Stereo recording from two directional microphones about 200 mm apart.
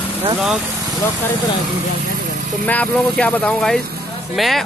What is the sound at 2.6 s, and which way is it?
Speech, 5° left (ahead or behind).